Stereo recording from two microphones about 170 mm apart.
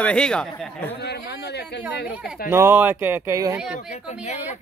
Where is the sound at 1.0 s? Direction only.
75° left (ahead or behind).